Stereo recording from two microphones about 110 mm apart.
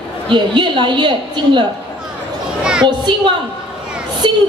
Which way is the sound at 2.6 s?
10° right (ahead or behind).